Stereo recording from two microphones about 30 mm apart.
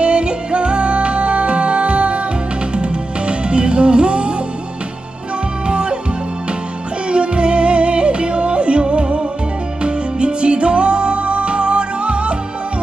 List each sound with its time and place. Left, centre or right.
0.0 s music: right
5.7 s music: right
7.1 s yodeling: right
9.8 s music: right